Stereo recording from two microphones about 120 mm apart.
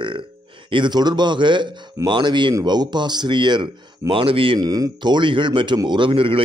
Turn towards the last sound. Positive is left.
turn(degrees=-45)  # may be behind; listen again after turning